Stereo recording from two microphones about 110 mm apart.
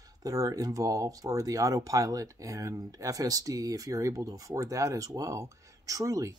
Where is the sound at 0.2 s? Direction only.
30° right (ahead or behind).